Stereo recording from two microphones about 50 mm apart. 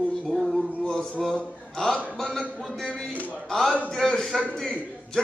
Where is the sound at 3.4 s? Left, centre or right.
Centre.